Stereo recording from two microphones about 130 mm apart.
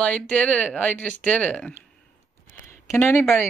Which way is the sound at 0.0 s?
10° left (ahead or behind).